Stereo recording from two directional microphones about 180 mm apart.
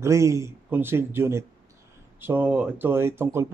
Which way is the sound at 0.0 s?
15° right (ahead or behind).